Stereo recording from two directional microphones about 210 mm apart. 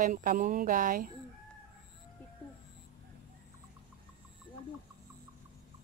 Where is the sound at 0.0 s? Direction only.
40° right (ahead or behind).